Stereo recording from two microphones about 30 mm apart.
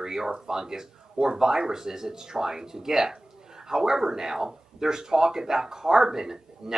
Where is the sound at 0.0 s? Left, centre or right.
Centre.